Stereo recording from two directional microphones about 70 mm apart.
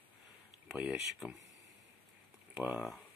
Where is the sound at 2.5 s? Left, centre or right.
Centre.